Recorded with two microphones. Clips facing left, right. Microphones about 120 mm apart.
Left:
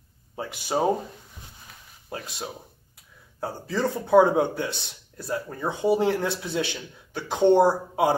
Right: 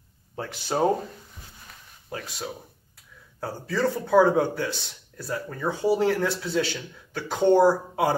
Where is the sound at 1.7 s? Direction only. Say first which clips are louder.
Even; centre (ahead or behind).